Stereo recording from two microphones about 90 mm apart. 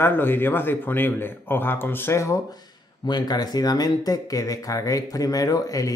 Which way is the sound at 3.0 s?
50° left (ahead or behind).